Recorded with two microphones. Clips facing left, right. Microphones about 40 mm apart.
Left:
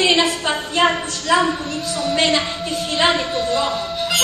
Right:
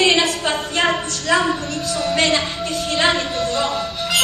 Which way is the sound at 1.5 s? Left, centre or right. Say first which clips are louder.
Even; centre.